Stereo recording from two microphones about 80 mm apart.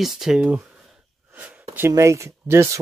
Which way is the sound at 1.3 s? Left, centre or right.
Right.